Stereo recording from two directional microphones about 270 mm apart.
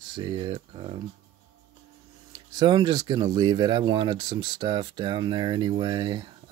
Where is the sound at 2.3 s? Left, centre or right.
Centre.